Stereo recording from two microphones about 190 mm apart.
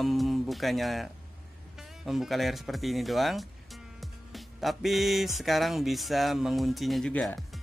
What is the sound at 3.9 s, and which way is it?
Music, centre (ahead or behind).